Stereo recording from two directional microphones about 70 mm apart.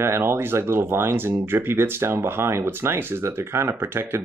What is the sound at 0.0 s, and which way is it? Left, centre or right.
Speech, right.